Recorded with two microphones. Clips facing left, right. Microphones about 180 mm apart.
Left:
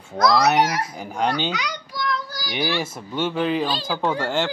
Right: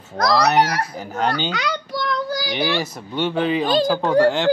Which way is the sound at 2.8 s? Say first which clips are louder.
Right 2 dB; 5° left (ahead or behind).